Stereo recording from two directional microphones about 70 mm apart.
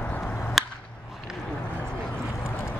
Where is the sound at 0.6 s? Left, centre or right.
Centre.